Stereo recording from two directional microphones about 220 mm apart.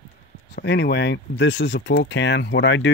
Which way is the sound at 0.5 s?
50° left (ahead or behind).